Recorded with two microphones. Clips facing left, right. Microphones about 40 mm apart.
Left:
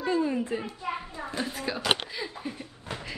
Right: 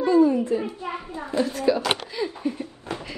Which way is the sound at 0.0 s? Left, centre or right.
Left.